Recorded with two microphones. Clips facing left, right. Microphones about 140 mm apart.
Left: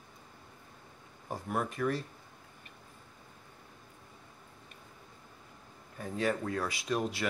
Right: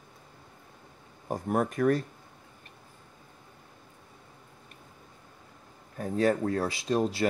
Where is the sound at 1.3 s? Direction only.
45° right (ahead or behind).